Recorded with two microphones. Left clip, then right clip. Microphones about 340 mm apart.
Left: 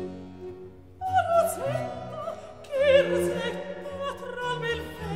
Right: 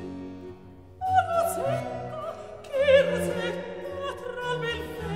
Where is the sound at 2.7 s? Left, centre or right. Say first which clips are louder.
Even; centre.